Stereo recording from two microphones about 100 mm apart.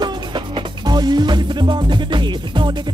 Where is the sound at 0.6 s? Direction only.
45° right (ahead or behind).